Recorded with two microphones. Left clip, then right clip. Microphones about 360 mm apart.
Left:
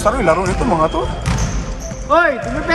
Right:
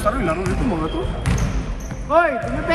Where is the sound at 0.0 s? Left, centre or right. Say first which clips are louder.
Left 7 dB; centre.